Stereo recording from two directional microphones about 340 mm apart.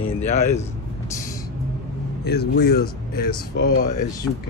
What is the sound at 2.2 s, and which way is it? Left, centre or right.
Speech, left.